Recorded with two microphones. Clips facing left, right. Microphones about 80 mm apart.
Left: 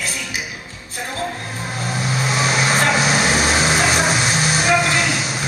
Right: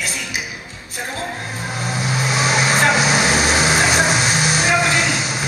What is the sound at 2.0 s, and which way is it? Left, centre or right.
Vehicle, centre.